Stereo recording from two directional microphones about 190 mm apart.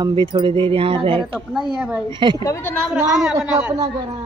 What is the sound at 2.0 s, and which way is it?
Speech, 25° right (ahead or behind).